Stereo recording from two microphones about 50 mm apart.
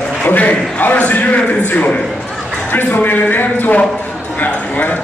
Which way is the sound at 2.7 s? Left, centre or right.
Left.